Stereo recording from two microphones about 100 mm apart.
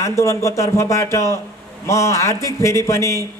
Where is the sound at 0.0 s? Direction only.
30° left (ahead or behind).